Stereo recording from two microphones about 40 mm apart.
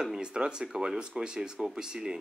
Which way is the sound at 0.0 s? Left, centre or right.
Right.